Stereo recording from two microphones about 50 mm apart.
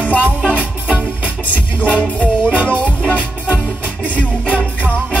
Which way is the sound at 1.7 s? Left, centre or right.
Left.